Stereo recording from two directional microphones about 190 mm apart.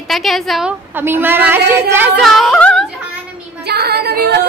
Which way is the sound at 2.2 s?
Centre (ahead or behind).